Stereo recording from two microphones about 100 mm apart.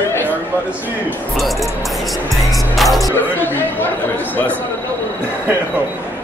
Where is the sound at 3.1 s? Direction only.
20° left (ahead or behind).